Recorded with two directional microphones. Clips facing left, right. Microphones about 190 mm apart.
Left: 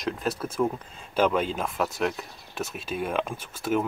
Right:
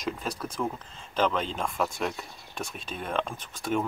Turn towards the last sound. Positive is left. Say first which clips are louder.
# left 3 dB
turn(degrees=5)  # may be behind; listen again after turning